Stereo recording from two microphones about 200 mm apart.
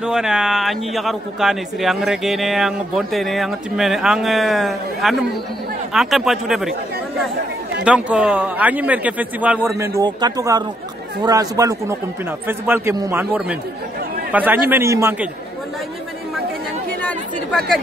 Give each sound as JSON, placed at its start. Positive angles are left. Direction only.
{"t": 0.0, "sound": "a man's voice", "side_deg": -5}
{"t": 7.8, "sound": "a man's voice", "side_deg": -5}
{"t": 17.0, "sound": "speech", "side_deg": 5}